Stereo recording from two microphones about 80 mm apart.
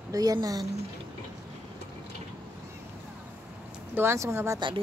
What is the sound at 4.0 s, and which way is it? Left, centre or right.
Speech, right.